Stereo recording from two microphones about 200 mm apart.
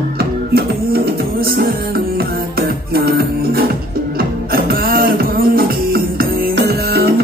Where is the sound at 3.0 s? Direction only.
50° right (ahead or behind).